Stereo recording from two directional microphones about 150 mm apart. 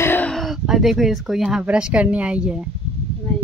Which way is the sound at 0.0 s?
15° left (ahead or behind).